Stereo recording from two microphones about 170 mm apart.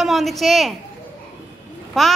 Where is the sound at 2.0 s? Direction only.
Centre (ahead or behind).